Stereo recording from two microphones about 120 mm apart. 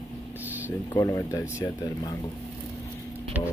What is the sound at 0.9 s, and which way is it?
Speech, 30° left (ahead or behind).